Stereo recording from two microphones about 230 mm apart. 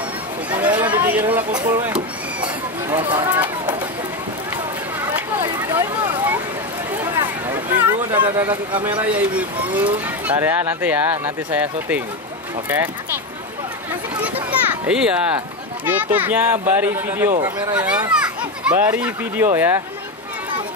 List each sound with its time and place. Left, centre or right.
0.6 s a sound: centre
1.3 s speech: centre
3.0 s speech: centre
3.3 s run: centre
5.5 s a sound: centre
8.4 s speech: centre
14.9 s speech: centre
17.3 s speech: right
17.7 s a child's voice: centre